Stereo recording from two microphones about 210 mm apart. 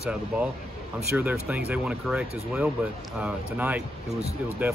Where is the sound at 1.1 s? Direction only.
10° right (ahead or behind).